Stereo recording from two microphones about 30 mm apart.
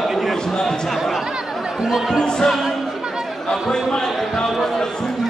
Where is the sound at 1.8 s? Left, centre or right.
Centre.